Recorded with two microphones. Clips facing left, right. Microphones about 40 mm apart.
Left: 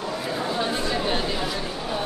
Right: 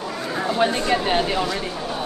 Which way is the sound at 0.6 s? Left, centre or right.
Right.